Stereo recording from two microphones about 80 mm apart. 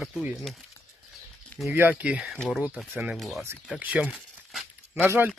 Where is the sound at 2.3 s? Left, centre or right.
Centre.